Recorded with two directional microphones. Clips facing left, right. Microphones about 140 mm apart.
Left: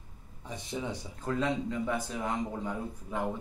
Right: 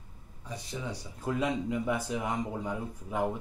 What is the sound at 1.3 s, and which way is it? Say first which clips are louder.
Speech: right 1 dB; 10° right (ahead or behind).